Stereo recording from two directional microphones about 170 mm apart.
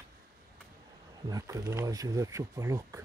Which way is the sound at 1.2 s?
20° right (ahead or behind).